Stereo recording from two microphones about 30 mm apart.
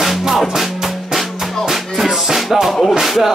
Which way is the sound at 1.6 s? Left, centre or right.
Centre.